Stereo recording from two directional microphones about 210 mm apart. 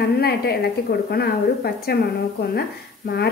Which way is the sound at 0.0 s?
50° left (ahead or behind).